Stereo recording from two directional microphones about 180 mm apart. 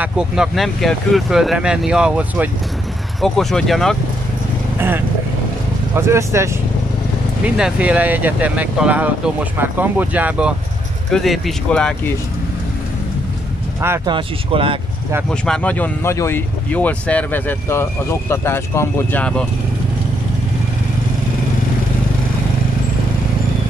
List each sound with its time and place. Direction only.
0.0 s speech: 5° right (ahead or behind)
4.7 s speech: 10° right (ahead or behind)
13.7 s speech: 15° right (ahead or behind)
14.1 s speech: 30° right (ahead or behind)
15.4 s speech: 5° left (ahead or behind)